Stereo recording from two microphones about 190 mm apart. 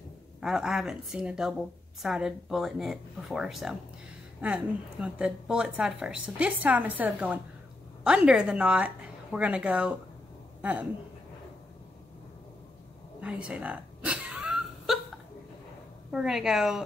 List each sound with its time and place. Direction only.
0.4 s a woman's voice: centre (ahead or behind)
13.2 s a sound: 5° right (ahead or behind)
16.1 s a woman's voice: 5° right (ahead or behind)